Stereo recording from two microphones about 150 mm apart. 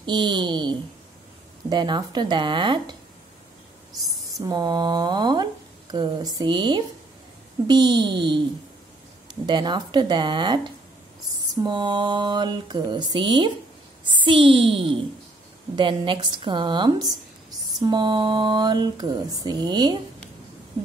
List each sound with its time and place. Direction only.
0.0 s a woman's voice: 30° right (ahead or behind)
4.4 s a woman's voice: 25° right (ahead or behind)